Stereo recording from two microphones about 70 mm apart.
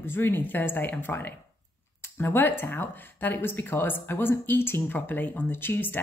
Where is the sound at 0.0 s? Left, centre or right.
Left.